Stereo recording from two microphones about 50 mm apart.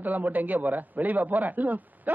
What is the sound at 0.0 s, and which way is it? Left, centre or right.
A man's voice, right.